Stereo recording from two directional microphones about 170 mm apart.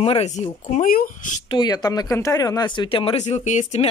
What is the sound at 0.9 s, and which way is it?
Speech, 55° left (ahead or behind).